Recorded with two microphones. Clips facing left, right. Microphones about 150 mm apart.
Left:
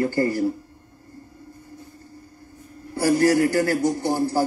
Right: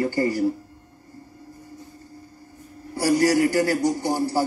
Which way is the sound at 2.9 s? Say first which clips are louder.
Left 1 dB; 15° right (ahead or behind).